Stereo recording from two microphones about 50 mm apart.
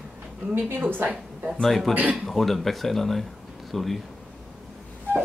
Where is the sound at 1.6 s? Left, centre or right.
Centre.